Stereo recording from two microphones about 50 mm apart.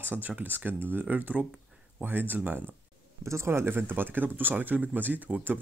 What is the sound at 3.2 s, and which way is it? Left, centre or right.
Speech, right.